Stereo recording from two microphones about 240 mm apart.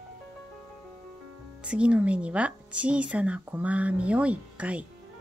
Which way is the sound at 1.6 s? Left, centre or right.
Centre.